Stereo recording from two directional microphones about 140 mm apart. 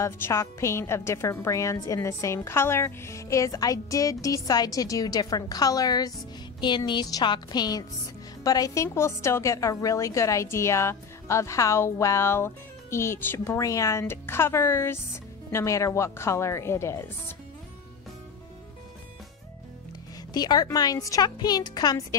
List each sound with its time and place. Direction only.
0.0 s a woman's voice: 20° left (ahead or behind)
20.3 s a woman's voice: 30° left (ahead or behind)